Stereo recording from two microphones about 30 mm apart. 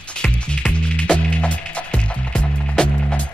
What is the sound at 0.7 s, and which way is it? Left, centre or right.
Music, left.